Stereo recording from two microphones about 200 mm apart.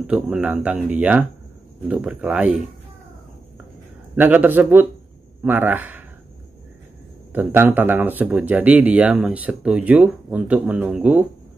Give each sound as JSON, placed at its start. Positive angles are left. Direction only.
{"t": 0.0, "sound": "speech", "side_deg": -5}
{"t": 4.1, "sound": "speech", "side_deg": -10}
{"t": 7.3, "sound": "speech", "side_deg": -10}